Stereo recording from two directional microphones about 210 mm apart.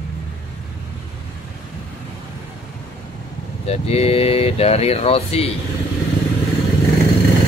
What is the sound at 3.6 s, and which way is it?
Speech, 30° left (ahead or behind).